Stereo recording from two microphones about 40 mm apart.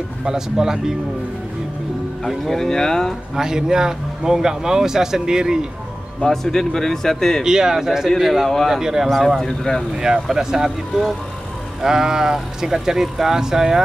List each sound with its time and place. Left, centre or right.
0.2 s a man's voice: centre
2.2 s speech: centre
3.3 s a man's voice: centre
6.2 s speech: centre
7.4 s a man's voice: centre
9.4 s speech: centre
9.9 s a man's voice: centre